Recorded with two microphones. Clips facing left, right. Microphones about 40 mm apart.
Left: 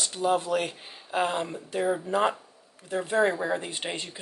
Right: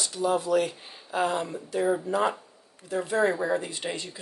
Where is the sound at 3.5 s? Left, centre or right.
Left.